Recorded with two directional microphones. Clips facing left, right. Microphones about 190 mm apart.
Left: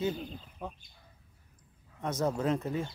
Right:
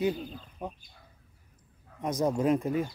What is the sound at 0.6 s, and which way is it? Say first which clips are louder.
Speech: right 3 dB; 15° right (ahead or behind).